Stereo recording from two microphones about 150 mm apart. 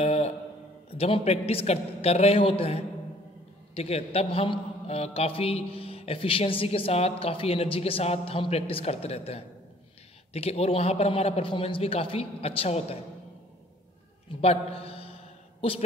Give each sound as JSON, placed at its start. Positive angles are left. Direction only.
{"t": 0.0, "sound": "a sound", "side_deg": 45}
{"t": 0.9, "sound": "a man's voice", "side_deg": 40}
{"t": 14.4, "sound": "a man's voice", "side_deg": 40}